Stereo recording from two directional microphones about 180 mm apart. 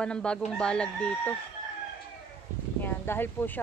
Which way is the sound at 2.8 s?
10° left (ahead or behind).